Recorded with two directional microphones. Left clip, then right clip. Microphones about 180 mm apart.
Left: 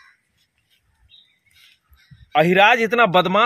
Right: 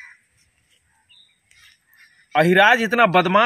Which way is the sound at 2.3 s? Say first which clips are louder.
Even; 20° left (ahead or behind).